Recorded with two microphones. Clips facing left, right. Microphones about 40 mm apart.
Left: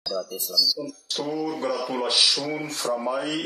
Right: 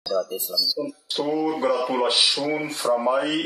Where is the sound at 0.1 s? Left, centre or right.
Centre.